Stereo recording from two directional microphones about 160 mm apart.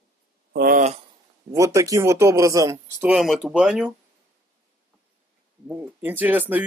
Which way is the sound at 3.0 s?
Centre (ahead or behind).